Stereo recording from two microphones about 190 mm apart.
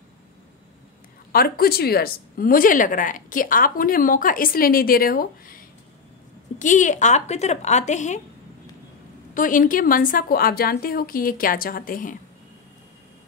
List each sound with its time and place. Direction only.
1.3 s speech: 50° left (ahead or behind)
6.6 s speech: 40° left (ahead or behind)
9.3 s speech: 45° left (ahead or behind)